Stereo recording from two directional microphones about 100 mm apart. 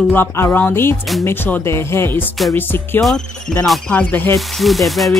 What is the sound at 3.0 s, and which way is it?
Speech, 5° left (ahead or behind).